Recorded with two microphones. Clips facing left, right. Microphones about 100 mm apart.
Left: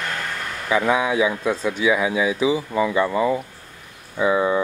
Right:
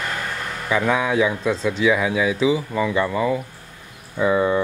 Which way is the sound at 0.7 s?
15° left (ahead or behind).